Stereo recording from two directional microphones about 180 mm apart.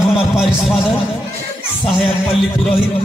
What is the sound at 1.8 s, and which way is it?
Speech, centre (ahead or behind).